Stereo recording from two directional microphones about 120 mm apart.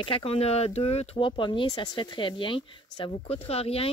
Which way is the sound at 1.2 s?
40° left (ahead or behind).